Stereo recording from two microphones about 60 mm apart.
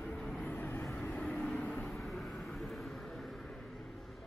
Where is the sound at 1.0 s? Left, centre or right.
Centre.